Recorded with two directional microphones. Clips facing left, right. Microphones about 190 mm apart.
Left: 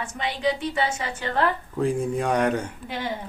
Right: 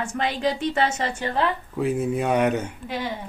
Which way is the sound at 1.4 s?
5° right (ahead or behind).